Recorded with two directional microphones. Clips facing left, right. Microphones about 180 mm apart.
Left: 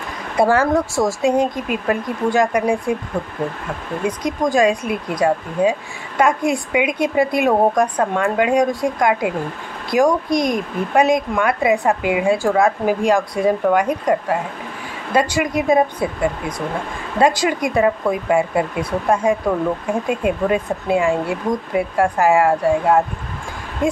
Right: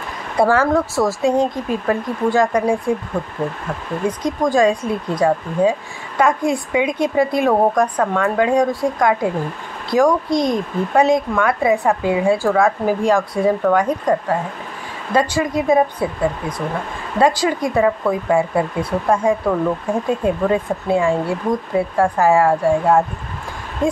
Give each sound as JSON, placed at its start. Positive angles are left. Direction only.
{"t": 0.4, "sound": "speech", "side_deg": 15}
{"t": 4.0, "sound": "speech", "side_deg": 10}